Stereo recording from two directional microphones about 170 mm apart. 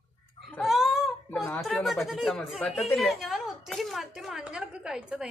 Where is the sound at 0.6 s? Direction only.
Centre (ahead or behind).